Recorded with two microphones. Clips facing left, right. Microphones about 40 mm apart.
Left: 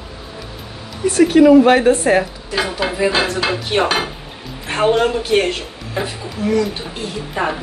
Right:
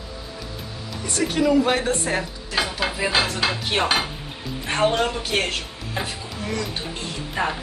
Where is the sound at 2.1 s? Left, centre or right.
Left.